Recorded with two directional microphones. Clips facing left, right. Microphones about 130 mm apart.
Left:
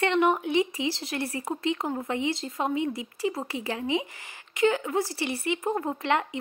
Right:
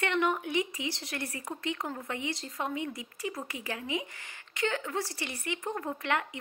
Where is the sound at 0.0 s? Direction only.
20° left (ahead or behind).